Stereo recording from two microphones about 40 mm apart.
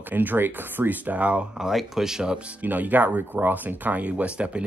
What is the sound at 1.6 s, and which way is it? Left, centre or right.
Speech, centre.